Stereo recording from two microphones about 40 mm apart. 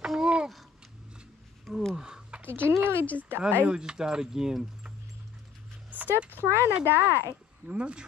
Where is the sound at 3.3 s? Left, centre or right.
Right.